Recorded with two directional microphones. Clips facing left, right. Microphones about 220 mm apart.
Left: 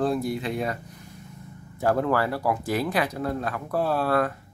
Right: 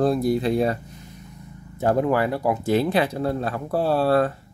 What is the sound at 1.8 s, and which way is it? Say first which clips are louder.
Speech: right 3 dB; 20° right (ahead or behind).